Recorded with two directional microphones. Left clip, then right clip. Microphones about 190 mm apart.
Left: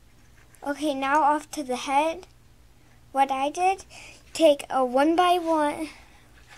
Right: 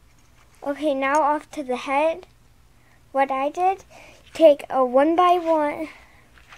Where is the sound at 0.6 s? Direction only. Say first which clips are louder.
Right 4 dB; 30° right (ahead or behind).